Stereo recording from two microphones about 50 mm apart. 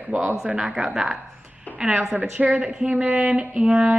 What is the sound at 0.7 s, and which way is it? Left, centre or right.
Speech, centre.